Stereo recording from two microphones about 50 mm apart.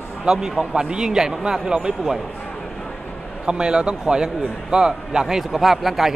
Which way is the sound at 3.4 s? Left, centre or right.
Centre.